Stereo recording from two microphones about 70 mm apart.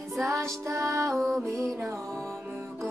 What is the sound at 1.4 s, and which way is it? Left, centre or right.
Music, right.